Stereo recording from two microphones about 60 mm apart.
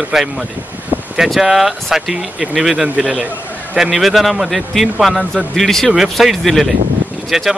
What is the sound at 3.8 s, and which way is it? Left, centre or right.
A man's voice, centre.